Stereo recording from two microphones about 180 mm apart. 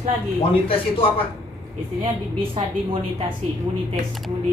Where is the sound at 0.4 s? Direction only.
30° left (ahead or behind).